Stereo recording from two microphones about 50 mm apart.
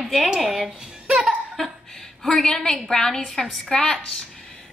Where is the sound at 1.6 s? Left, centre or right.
Centre.